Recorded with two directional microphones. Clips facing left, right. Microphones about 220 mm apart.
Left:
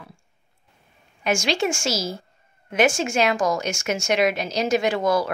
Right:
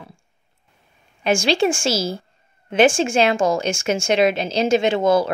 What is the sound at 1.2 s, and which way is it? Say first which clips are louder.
A woman's voice: right 5 dB; 30° right (ahead or behind).